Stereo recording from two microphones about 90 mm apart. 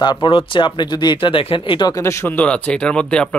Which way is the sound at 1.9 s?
30° left (ahead or behind).